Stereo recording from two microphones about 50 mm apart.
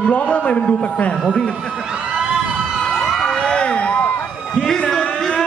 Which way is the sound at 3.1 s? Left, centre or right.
Centre.